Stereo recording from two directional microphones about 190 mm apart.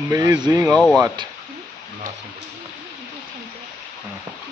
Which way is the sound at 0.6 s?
Centre (ahead or behind).